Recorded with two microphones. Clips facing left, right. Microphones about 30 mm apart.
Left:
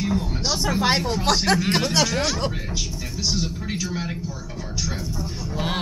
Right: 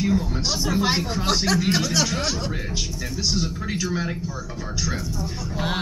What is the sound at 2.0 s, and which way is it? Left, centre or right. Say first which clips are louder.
A man's voice: left 2 dB; centre.